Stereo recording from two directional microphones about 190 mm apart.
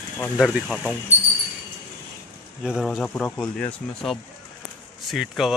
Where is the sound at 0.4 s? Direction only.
Centre (ahead or behind).